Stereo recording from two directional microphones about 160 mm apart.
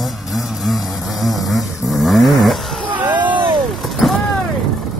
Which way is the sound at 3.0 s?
30° right (ahead or behind).